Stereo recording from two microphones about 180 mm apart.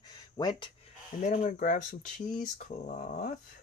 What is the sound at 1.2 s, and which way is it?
Speech, 40° left (ahead or behind).